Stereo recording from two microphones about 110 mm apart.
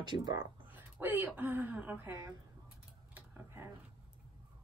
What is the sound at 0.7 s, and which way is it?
Speech, 20° right (ahead or behind).